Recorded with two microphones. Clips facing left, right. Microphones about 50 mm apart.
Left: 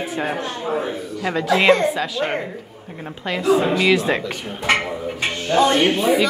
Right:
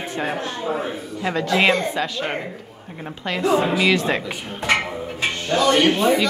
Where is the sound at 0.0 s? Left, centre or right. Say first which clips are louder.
Left 1 dB; centre.